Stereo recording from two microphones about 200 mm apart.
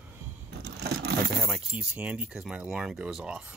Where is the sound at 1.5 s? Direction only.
5° right (ahead or behind).